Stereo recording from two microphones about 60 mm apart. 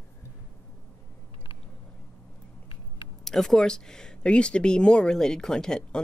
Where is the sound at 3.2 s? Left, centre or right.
Centre.